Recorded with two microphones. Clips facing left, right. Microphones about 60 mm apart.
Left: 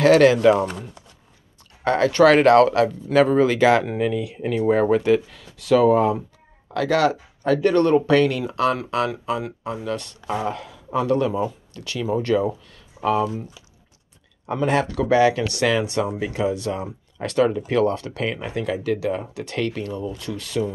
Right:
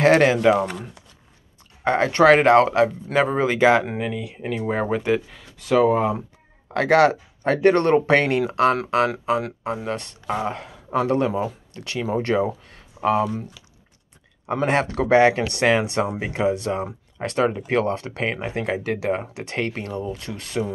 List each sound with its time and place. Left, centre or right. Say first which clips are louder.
0.0 s speech: left 2 dB; right
1.9 s speech: even; right
6.7 s speech: right 3 dB; right
14.6 s speech: even; right